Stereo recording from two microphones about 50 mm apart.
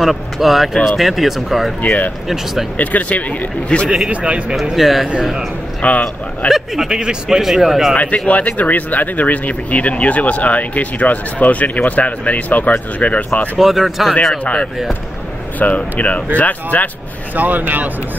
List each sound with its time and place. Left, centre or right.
0.0 s speech: centre
1.8 s speech: left
4.1 s a man's voice: right
4.7 s speech: centre
5.8 s speech: left
6.5 s speech: centre
7.9 s speech: left
13.6 s speech: centre
14.4 s speech: left
17.4 s speech: right